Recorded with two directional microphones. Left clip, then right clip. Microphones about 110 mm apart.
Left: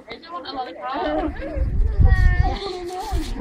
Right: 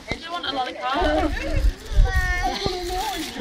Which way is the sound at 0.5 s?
30° right (ahead or behind).